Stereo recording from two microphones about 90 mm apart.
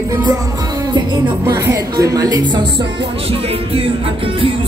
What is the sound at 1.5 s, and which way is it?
Speech, 40° right (ahead or behind).